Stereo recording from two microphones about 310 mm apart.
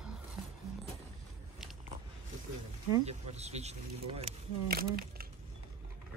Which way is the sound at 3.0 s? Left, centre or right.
Right.